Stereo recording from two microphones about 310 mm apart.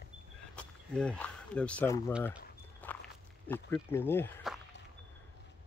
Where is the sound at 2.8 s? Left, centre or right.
Centre.